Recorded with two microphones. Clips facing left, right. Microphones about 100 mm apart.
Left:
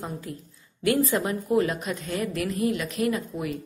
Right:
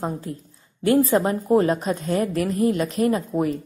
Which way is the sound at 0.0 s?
35° right (ahead or behind).